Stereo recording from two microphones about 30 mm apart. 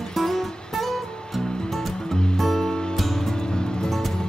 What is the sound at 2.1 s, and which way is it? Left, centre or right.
Music, left.